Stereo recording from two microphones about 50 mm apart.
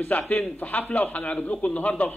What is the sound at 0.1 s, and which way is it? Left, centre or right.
A man's voice, left.